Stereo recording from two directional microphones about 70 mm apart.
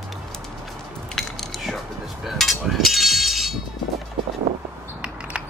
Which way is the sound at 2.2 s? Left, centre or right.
Centre.